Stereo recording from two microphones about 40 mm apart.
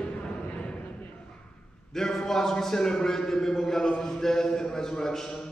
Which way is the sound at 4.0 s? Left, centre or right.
Centre.